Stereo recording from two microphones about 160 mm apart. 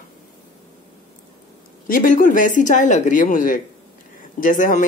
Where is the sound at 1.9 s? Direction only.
55° left (ahead or behind).